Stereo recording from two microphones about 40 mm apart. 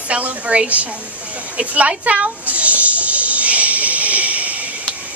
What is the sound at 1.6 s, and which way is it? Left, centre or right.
Snake, right.